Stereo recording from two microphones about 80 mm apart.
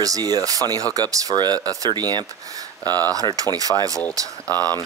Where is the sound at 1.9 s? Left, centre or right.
Right.